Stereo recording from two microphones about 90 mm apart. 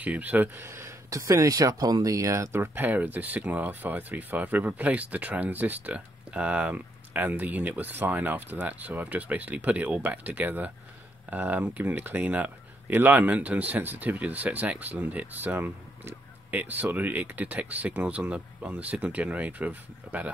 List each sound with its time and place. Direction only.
0.0 s speech: 15° right (ahead or behind)